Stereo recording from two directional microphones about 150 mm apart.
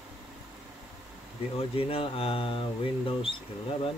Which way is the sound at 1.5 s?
40° left (ahead or behind).